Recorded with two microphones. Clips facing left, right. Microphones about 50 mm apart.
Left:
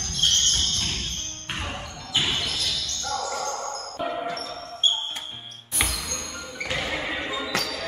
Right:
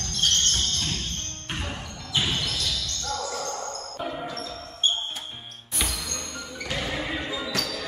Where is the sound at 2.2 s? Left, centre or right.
Centre.